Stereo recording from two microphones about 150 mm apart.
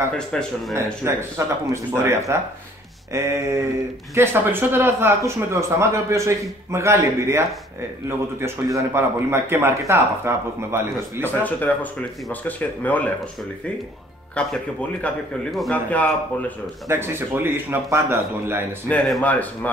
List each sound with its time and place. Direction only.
0.1 s speech: 5° left (ahead or behind)
1.0 s speech: 20° right (ahead or behind)
8.7 s speech: 15° right (ahead or behind)
11.4 s speech: 10° left (ahead or behind)
14.3 s speech: 10° left (ahead or behind)
16.8 s speech: 15° right (ahead or behind)
18.9 s speech: 5° left (ahead or behind)